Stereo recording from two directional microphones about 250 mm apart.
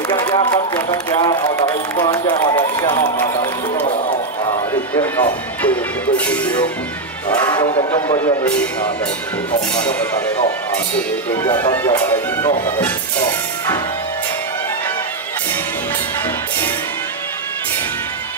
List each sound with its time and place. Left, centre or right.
0.1 s run: centre
5.0 s speech: centre
7.2 s speech: centre
9.8 s speech: centre
11.4 s speech: centre